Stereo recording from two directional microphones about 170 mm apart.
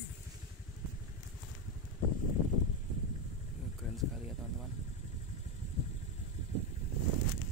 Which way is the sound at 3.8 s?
Centre (ahead or behind).